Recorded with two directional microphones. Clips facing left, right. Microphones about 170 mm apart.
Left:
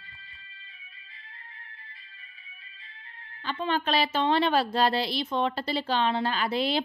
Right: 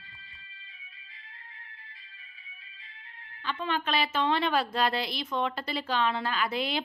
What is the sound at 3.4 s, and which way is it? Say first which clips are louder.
A woman's voice: left 3 dB; 35° left (ahead or behind).